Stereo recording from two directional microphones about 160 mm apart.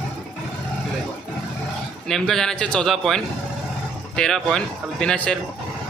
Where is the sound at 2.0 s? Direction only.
Centre (ahead or behind).